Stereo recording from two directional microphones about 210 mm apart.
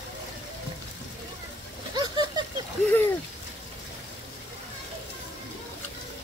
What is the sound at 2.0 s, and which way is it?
Vehicle, 20° right (ahead or behind).